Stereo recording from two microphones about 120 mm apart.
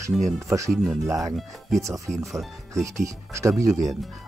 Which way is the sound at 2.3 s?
25° right (ahead or behind).